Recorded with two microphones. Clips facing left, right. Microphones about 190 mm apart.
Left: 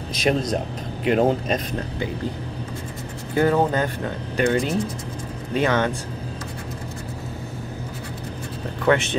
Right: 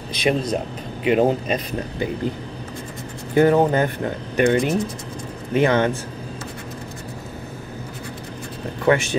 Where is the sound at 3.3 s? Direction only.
20° right (ahead or behind).